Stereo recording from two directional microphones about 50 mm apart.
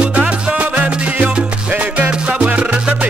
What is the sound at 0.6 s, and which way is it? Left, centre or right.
Music, right.